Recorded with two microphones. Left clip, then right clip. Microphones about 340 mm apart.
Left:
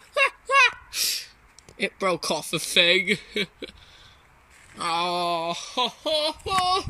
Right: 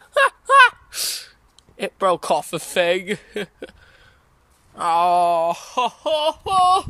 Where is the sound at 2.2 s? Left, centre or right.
Centre.